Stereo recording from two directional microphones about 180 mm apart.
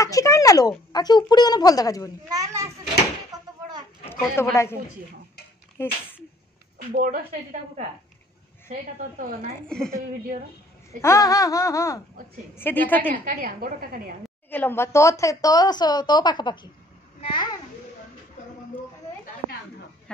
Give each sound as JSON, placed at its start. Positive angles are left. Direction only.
{"t": 0.0, "sound": "speech", "side_deg": 20}
{"t": 2.2, "sound": "children playing", "side_deg": -20}
{"t": 3.3, "sound": "a sound", "side_deg": -20}
{"t": 4.4, "sound": "speech", "side_deg": 15}
{"t": 5.8, "sound": "speech", "side_deg": 10}
{"t": 6.9, "sound": "a woman's voice", "side_deg": -50}
{"t": 9.7, "sound": "a woman's voice", "side_deg": 5}
{"t": 11.0, "sound": "speech", "side_deg": 15}
{"t": 13.1, "sound": "a woman's voice", "side_deg": -50}
{"t": 14.5, "sound": "a child's voice", "side_deg": 10}